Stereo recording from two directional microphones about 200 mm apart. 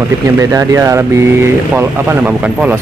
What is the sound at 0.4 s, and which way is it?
Speech, 15° right (ahead or behind).